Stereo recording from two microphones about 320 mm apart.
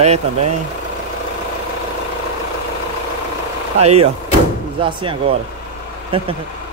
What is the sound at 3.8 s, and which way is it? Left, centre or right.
Speech, centre.